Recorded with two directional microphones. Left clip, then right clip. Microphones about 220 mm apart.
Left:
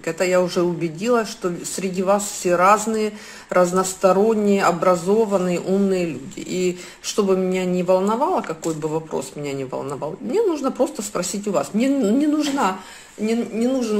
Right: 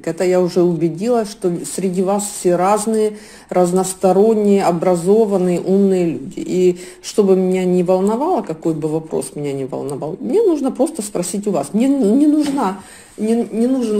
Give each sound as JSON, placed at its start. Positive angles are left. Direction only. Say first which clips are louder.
{"t": 0.0, "sound": "speech", "louder": "right 3 dB", "side_deg": -25}
{"t": 9.7, "sound": "speech", "louder": "right 3 dB", "side_deg": -10}
{"t": 10.3, "sound": "speech", "louder": "right 5 dB", "side_deg": -30}
{"t": 13.2, "sound": "speech", "louder": "right 5 dB", "side_deg": -40}